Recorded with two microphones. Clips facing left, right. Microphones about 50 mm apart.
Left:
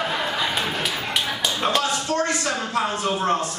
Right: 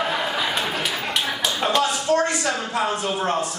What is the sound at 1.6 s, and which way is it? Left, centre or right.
Tap, centre.